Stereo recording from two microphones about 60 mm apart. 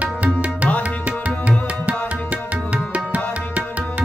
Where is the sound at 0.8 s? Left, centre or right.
Right.